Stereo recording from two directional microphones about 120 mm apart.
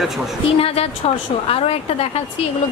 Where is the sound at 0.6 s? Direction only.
55° left (ahead or behind).